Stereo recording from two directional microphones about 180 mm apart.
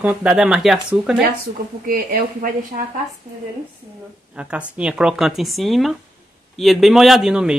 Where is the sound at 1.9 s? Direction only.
55° right (ahead or behind).